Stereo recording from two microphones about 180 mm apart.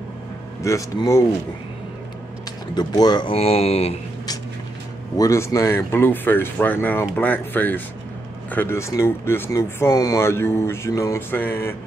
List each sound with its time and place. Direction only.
0.6 s speech: 15° left (ahead or behind)
2.7 s speech: 25° left (ahead or behind)
3.3 s speech: 35° left (ahead or behind)
5.1 s speech: 15° left (ahead or behind)